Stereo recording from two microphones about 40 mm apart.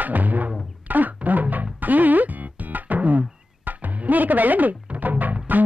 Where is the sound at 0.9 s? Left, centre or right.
Right.